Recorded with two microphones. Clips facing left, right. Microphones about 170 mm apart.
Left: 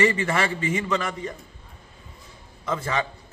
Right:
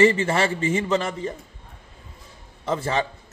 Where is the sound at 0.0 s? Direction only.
25° right (ahead or behind).